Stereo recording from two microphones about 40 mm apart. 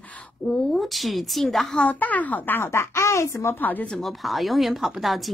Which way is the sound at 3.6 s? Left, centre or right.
Left.